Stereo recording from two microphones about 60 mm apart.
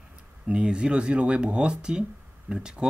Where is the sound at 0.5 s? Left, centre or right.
Centre.